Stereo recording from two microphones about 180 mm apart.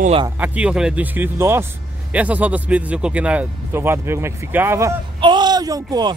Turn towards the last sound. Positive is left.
turn(degrees=-20)  # may be behind; listen again after turning